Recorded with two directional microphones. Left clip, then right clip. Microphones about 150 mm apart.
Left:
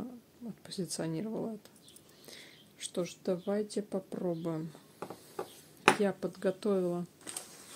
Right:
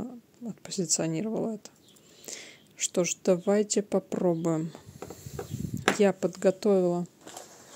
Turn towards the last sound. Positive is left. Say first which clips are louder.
# right 8 dB
turn(degrees=-40)  # may be behind; listen again after turning